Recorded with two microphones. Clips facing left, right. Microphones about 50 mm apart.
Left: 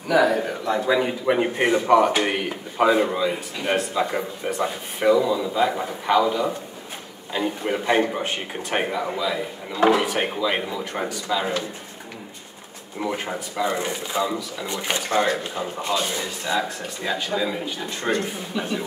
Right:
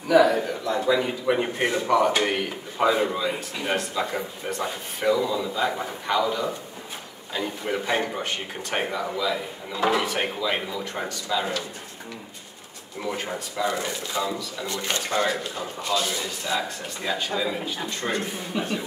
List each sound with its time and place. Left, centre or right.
0.1 s speech: centre
13.0 s speech: centre